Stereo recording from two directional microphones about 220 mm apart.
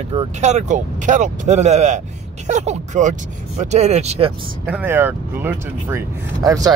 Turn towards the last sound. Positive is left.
turn(degrees=-15)  # may be behind; listen again after turning